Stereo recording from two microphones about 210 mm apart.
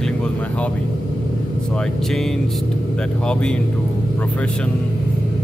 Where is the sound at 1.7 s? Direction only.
5° left (ahead or behind).